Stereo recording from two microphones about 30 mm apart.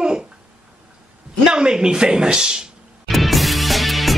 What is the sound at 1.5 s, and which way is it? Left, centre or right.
Speech, right.